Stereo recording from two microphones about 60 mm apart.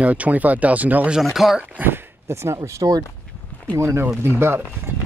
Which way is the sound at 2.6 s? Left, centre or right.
Right.